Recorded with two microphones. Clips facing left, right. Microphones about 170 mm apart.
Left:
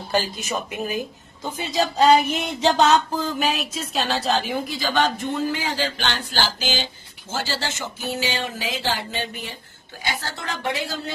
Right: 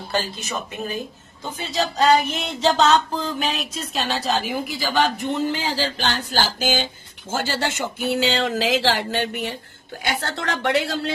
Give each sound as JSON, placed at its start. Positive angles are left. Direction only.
{"t": 0.1, "sound": "a sound", "side_deg": 15}
{"t": 3.3, "sound": "a woman's voice", "side_deg": 0}
{"t": 5.5, "sound": "a woman's voice", "side_deg": -30}